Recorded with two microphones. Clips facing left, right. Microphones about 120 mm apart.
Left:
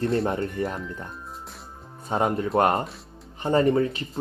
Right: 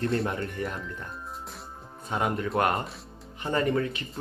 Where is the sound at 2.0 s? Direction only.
30° left (ahead or behind).